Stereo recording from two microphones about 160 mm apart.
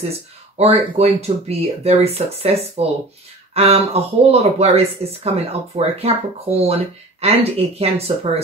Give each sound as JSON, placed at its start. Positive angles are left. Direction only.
{"t": 0.6, "sound": "speech", "side_deg": -40}